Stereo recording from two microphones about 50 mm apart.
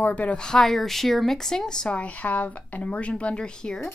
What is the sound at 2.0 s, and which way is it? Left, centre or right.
Speech, left.